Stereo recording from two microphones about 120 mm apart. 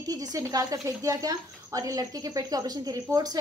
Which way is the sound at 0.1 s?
30° right (ahead or behind).